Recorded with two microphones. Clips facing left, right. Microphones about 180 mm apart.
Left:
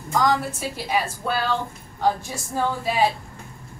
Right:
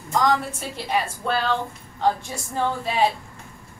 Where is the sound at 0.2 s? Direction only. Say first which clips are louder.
Even; 5° left (ahead or behind).